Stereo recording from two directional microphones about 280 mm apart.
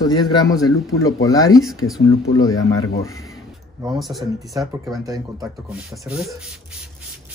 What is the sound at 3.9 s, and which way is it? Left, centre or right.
Speech, centre.